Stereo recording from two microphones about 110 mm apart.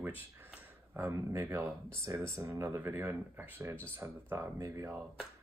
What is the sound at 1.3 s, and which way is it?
Speech, 25° right (ahead or behind).